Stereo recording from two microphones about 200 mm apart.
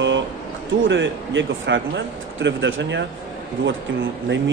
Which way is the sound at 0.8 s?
65° right (ahead or behind).